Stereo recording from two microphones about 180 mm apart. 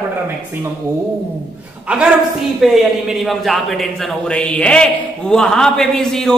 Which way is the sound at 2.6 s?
Centre (ahead or behind).